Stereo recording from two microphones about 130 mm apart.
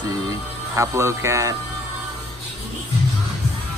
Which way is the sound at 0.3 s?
20° right (ahead or behind).